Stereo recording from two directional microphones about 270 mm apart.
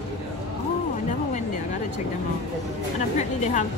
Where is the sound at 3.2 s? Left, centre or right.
Left.